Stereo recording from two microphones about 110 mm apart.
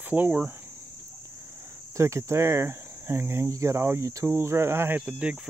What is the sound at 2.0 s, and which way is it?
Speech, 25° right (ahead or behind).